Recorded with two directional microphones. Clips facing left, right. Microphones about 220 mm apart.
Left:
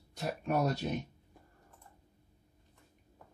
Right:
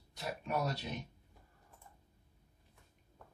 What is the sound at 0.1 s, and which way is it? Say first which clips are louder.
Speech: left 5 dB; 45° left (ahead or behind).